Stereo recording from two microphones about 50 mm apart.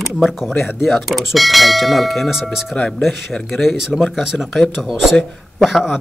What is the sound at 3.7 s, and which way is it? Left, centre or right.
Speech, centre.